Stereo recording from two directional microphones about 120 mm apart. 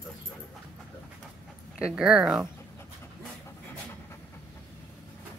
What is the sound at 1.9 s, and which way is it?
Speech, 5° right (ahead or behind).